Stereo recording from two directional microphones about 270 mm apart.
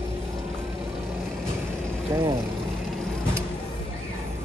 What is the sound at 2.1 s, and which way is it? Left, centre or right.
Speech, centre.